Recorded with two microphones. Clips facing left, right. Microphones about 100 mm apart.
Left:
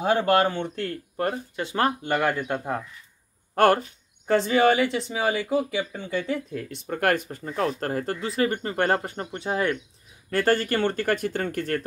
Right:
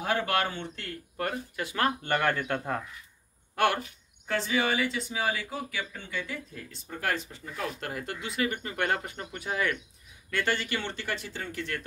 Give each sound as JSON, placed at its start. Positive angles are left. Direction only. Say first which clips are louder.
{"t": 0.0, "sound": "speech", "louder": "left 8 dB", "side_deg": 30}
{"t": 0.5, "sound": "speech", "louder": "left 9 dB", "side_deg": 55}
{"t": 1.1, "sound": "speech", "louder": "left 3 dB", "side_deg": 30}
{"t": 2.0, "sound": "speech", "louder": "left 3 dB", "side_deg": 10}
{"t": 3.5, "sound": "speech", "louder": "left 7 dB", "side_deg": 45}
{"t": 5.1, "sound": "speech", "louder": "left 7 dB", "side_deg": 25}
{"t": 6.5, "sound": "speech", "louder": "left 10 dB", "side_deg": 65}
{"t": 7.4, "sound": "speech", "louder": "left 10 dB", "side_deg": 40}
{"t": 10.3, "sound": "speech", "louder": "left 8 dB", "side_deg": 40}